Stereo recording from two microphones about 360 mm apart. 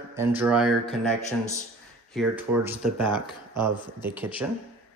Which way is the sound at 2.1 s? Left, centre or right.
Centre.